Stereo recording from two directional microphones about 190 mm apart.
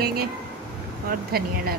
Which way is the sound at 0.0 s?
55° right (ahead or behind).